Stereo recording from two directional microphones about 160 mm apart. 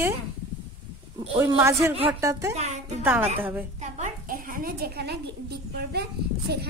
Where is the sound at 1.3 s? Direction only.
15° right (ahead or behind).